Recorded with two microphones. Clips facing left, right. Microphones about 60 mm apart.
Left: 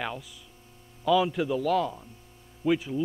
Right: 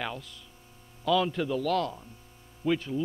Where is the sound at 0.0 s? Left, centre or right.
Centre.